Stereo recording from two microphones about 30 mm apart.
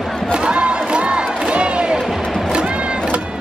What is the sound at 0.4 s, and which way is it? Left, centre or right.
Crowd, right.